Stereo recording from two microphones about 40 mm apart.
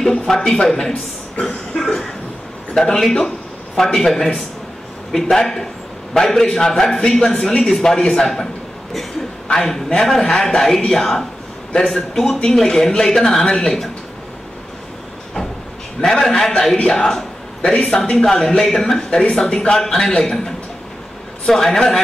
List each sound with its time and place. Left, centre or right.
0.2 s a man's voice: centre
1.7 s cough: centre
2.7 s a man's voice: centre
9.5 s a man's voice: centre
16.0 s a man's voice: centre